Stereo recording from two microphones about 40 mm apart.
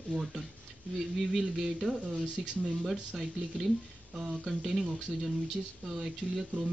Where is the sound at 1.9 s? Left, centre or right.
Right.